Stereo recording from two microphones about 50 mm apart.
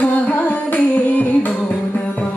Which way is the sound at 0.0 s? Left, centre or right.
Left.